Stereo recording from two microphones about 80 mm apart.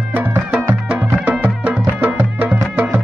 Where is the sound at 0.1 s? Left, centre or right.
Right.